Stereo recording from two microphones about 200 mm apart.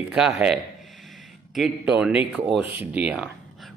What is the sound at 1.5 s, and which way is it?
Speech, centre (ahead or behind).